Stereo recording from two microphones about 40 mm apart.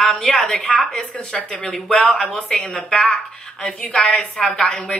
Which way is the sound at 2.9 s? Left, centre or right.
Centre.